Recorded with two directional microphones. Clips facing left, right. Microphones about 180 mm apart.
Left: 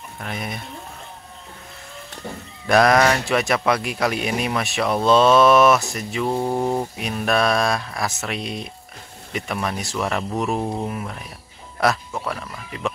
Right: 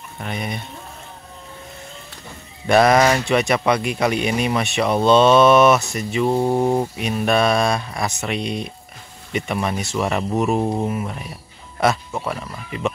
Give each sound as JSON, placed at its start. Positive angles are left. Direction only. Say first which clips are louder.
{"t": 0.2, "sound": "speech", "louder": "right 3 dB", "side_deg": 0}
{"t": 2.6, "sound": "speech", "louder": "right 2 dB", "side_deg": 0}
{"t": 6.2, "sound": "mantra", "louder": "right 4 dB", "side_deg": -20}
{"t": 6.6, "sound": "a sound", "louder": "right 4 dB", "side_deg": -20}
{"t": 7.0, "sound": "speech", "louder": "right 2 dB", "side_deg": 0}